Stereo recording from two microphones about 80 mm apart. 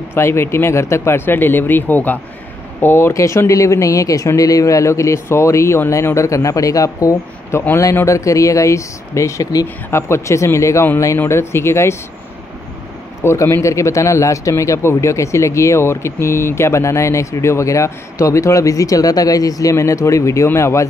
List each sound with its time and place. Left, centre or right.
0.1 s speech: left
7.7 s speech: left
9.8 s speech: left
13.2 s speech: left